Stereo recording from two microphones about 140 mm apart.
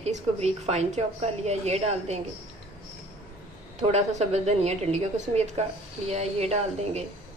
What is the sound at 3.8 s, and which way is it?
A woman's voice, 50° right (ahead or behind).